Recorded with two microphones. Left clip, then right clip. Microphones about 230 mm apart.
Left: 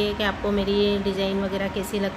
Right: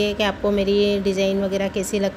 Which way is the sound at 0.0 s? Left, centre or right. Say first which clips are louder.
Right 4 dB; right.